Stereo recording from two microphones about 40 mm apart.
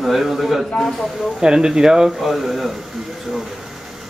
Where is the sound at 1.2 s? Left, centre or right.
Centre.